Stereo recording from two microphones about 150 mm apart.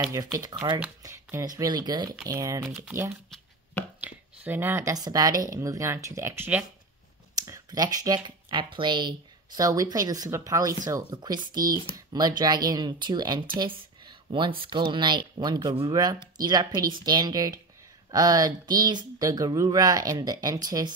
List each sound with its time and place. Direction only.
0.1 s speech: 25° right (ahead or behind)
1.0 s speech: 20° right (ahead or behind)
4.0 s speech: 15° right (ahead or behind)